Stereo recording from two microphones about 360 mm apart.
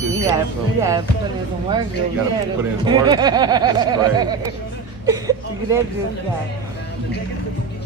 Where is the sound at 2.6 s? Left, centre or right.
Centre.